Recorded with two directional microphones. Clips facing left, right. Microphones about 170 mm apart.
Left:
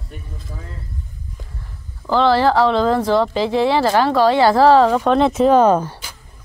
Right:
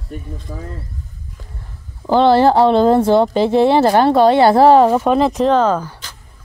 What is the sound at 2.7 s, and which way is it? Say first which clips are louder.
Speech: right 5 dB; 50° right (ahead or behind).